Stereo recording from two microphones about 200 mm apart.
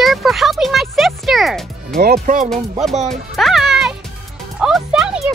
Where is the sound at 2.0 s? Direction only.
45° right (ahead or behind).